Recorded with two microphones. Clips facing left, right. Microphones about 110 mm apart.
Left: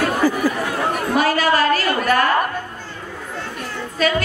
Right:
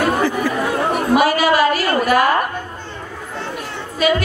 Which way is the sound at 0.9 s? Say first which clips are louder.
Right 4 dB; 10° right (ahead or behind).